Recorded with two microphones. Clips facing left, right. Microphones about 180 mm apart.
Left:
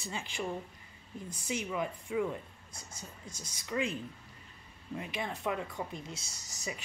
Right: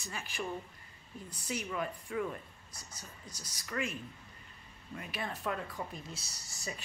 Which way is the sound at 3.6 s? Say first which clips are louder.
Left 4 dB; 25° left (ahead or behind).